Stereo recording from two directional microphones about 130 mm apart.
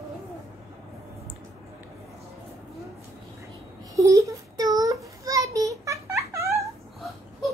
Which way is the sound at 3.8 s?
25° right (ahead or behind).